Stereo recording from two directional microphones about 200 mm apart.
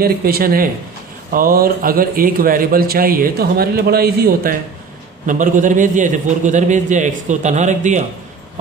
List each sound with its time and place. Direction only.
0.0 s a man's voice: 50° right (ahead or behind)